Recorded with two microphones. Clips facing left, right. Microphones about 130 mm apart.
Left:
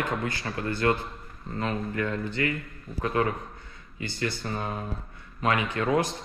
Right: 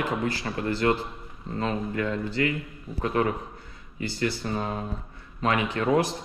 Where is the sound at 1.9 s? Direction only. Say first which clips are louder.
Right 2 dB; 30° right (ahead or behind).